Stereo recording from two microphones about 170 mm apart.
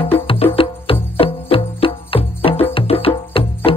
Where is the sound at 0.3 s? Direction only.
35° left (ahead or behind).